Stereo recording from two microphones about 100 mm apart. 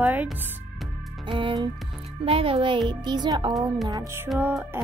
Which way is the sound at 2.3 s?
70° right (ahead or behind).